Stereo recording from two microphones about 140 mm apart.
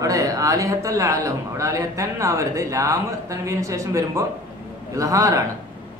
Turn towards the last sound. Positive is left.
turn(degrees=-25)  # may be behind; listen again after turning